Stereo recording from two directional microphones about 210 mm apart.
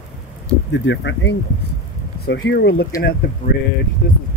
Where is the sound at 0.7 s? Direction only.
60° left (ahead or behind).